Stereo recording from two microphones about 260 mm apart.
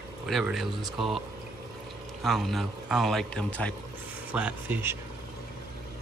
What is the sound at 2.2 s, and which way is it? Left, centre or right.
Speech, centre.